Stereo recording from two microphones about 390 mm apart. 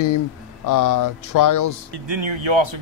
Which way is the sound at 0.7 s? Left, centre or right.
Left.